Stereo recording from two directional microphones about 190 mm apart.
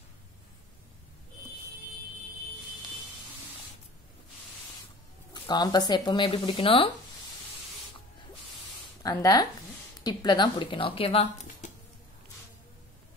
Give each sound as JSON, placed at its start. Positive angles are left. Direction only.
{"t": 5.3, "sound": "speech", "side_deg": 20}
{"t": 9.0, "sound": "speech", "side_deg": 20}